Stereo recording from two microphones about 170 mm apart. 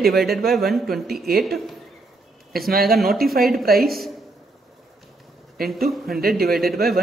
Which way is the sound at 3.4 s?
Centre (ahead or behind).